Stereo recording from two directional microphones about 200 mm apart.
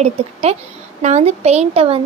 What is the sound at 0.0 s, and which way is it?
Speech, 30° right (ahead or behind).